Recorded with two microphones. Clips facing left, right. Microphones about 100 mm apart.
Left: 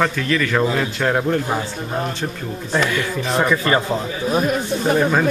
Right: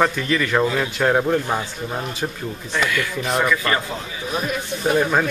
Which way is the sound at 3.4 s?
25° left (ahead or behind).